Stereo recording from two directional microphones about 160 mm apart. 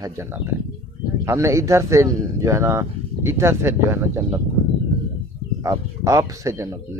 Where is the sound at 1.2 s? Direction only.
20° right (ahead or behind).